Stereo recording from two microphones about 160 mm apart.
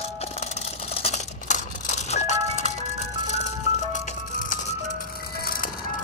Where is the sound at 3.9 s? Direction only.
55° left (ahead or behind).